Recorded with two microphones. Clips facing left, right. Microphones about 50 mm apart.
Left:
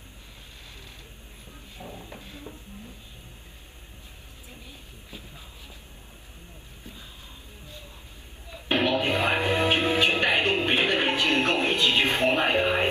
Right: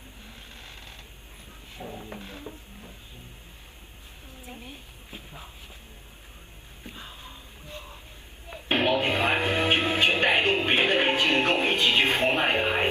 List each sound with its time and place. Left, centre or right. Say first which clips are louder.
1.9 s a sound: right 3 dB; right
2.1 s a woman's voice: right 3 dB; right
4.5 s a woman's voice: right 5 dB; right
8.6 s music: even; right